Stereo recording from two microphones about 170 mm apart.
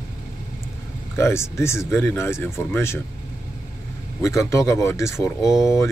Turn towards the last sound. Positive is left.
turn(degrees=15)  # may be behind; listen again after turning